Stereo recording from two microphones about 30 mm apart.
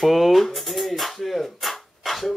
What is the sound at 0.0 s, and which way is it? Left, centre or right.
Music, centre.